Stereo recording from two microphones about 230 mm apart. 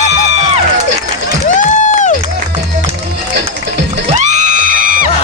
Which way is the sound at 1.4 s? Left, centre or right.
Left.